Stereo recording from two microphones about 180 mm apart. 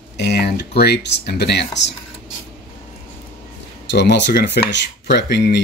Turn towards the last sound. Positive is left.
turn(degrees=70)  # may be behind; listen again after turning